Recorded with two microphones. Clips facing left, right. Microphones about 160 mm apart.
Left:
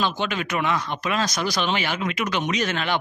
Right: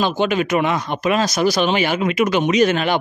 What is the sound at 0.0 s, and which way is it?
Speech, 15° right (ahead or behind).